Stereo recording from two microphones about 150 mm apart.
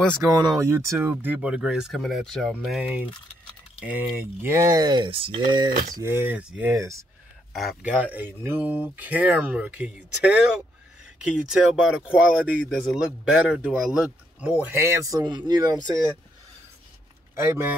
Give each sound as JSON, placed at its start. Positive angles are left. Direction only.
{"t": 0.2, "sound": "speech", "side_deg": -25}
{"t": 5.7, "sound": "speech", "side_deg": -70}
{"t": 5.9, "sound": "speech", "side_deg": -15}
{"t": 7.5, "sound": "speech", "side_deg": 0}
{"t": 7.9, "sound": "speech", "side_deg": -10}
{"t": 17.4, "sound": "speech", "side_deg": -15}